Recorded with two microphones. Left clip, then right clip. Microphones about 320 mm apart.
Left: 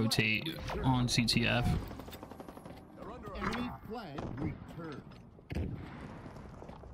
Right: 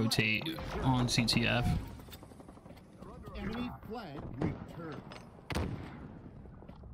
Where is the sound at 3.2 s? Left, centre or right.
Centre.